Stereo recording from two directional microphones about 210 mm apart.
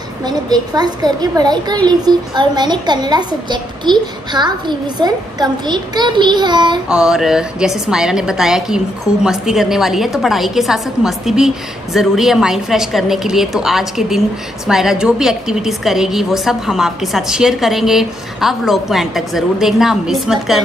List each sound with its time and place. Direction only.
0.2 s a child's voice: 20° right (ahead or behind)
6.9 s a woman's voice: 5° right (ahead or behind)